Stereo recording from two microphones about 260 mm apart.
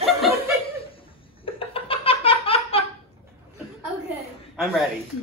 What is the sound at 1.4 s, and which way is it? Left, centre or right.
Laughter, left.